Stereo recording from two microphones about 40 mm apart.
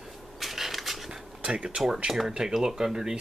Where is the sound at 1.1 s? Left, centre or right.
Right.